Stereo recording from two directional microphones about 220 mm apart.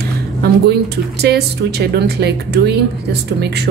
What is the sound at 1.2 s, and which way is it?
Speech, 50° right (ahead or behind).